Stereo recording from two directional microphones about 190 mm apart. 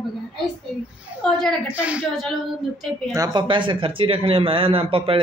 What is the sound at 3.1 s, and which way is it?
Speech, 20° right (ahead or behind).